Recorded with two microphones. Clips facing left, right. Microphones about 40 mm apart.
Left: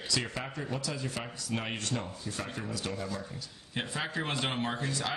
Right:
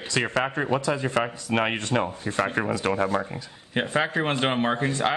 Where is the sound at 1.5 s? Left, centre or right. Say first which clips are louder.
Right 8 dB; right.